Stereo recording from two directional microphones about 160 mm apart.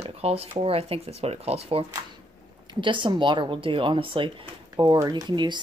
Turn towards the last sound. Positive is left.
turn(degrees=-30)  # may be behind; listen again after turning